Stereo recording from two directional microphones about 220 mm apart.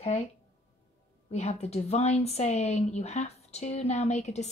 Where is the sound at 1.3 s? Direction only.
30° left (ahead or behind).